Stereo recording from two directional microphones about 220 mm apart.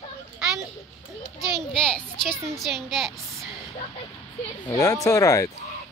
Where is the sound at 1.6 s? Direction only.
5° left (ahead or behind).